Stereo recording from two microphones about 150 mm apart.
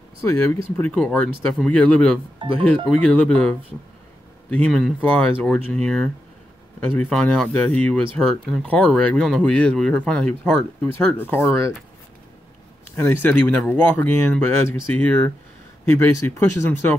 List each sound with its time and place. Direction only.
0.3 s speech: 10° left (ahead or behind)
2.3 s speech: 35° right (ahead or behind)
2.9 s speech: 10° left (ahead or behind)
12.9 s speech: 15° left (ahead or behind)